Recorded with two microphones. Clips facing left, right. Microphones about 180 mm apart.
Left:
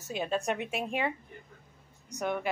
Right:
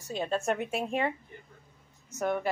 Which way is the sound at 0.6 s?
35° right (ahead or behind).